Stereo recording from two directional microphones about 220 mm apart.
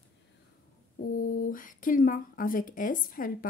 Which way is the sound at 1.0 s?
40° left (ahead or behind).